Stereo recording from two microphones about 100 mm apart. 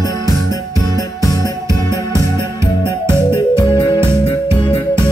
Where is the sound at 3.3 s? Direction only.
50° left (ahead or behind).